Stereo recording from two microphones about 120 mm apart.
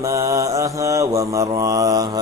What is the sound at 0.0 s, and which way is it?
Mantra, 25° right (ahead or behind).